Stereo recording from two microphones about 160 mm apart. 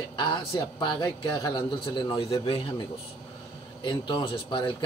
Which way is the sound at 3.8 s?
30° left (ahead or behind).